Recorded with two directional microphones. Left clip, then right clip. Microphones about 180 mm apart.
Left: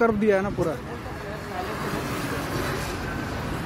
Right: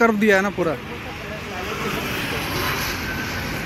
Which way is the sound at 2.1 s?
60° left (ahead or behind).